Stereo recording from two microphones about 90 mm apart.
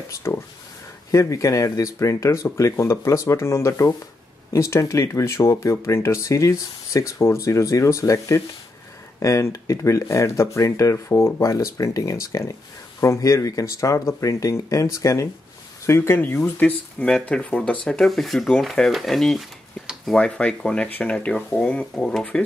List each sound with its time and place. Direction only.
0.1 s speech: 30° left (ahead or behind)
15.9 s speech: 25° left (ahead or behind)
17.0 s speech: 10° left (ahead or behind)